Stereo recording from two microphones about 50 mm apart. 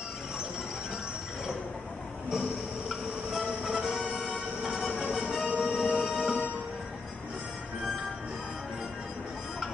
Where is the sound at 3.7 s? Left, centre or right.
Centre.